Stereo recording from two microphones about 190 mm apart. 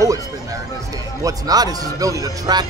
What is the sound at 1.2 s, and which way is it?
Speech, 20° right (ahead or behind).